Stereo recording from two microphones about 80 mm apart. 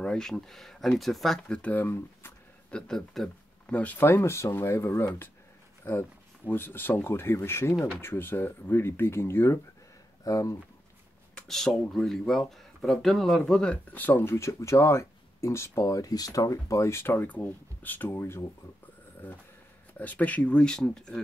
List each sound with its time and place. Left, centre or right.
0.0 s speech: centre
1.6 s speech: left
2.7 s speech: centre
3.7 s speech: left
10.2 s speech: left
11.3 s speech: centre